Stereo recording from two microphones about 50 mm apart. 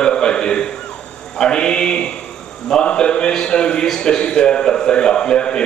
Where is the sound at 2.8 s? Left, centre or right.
Centre.